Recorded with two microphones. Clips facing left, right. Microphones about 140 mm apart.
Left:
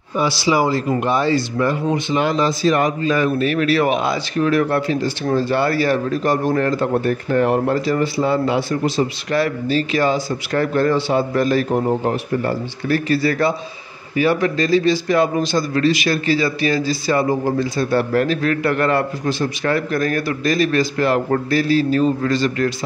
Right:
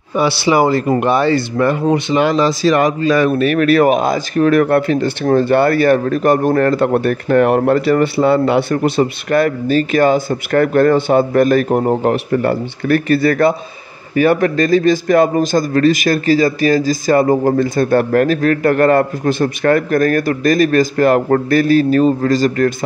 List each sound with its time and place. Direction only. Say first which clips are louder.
0.1 s a man's voice: right 4 dB; 65° right (ahead or behind); by 22.8 s 45° right (ahead or behind)